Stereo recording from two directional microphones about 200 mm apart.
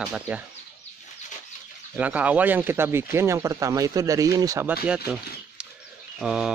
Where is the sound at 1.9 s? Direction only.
5° right (ahead or behind).